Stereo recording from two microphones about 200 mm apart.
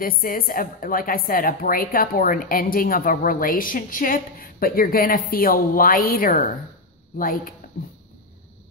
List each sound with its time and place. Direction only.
0.0 s a woman's voice: 45° left (ahead or behind)